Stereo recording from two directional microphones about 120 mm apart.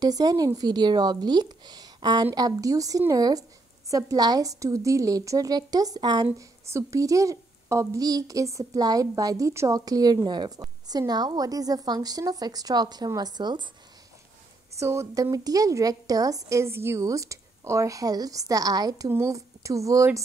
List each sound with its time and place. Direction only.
0.0 s a woman's voice: 35° right (ahead or behind)
14.8 s a woman's voice: 25° right (ahead or behind)